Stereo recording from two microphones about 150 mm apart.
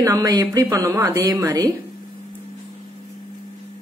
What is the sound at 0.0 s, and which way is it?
Speech, 25° right (ahead or behind).